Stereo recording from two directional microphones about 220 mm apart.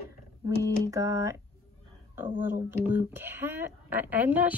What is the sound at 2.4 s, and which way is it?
Speech, 10° right (ahead or behind).